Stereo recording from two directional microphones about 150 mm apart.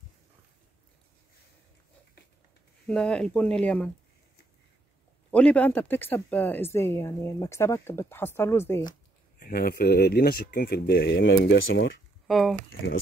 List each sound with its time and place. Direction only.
2.9 s speech: 5° left (ahead or behind)
5.3 s speech: 10° left (ahead or behind)
9.4 s speech: 75° left (ahead or behind); by 11.6 s 90° left
12.3 s speech: centre (ahead or behind)